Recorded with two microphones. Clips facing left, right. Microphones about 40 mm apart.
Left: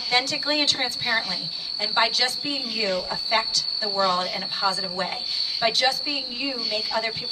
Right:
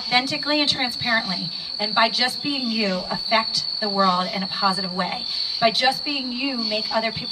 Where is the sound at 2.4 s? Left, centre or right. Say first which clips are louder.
Right 3 dB; centre.